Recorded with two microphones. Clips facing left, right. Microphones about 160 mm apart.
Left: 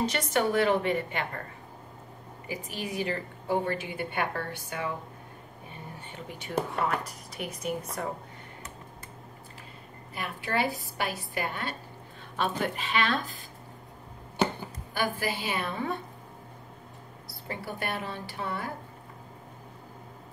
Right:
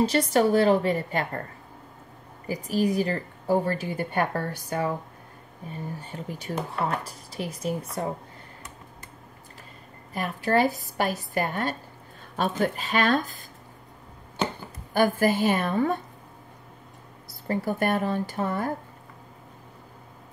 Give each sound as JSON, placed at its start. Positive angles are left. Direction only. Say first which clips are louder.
{"t": 0.0, "sound": "a woman's voice", "louder": "right 6 dB", "side_deg": -35}
{"t": 2.4, "sound": "a woman's voice", "louder": "right 11 dB", "side_deg": -40}
{"t": 5.9, "sound": "a woman's voice", "louder": "right 5 dB", "side_deg": -35}
{"t": 10.1, "sound": "a woman's voice", "louder": "right 7 dB", "side_deg": -40}
{"t": 15.0, "sound": "speech", "louder": "right 9 dB", "side_deg": -45}
{"t": 17.5, "sound": "speech", "louder": "right 10 dB", "side_deg": -45}